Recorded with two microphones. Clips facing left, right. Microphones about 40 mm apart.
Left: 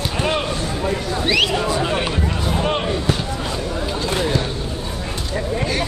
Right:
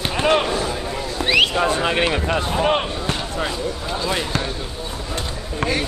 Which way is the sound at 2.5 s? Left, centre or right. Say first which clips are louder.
Right 1 dB; centre.